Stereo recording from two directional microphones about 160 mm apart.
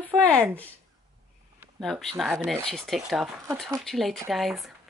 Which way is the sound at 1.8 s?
Centre (ahead or behind).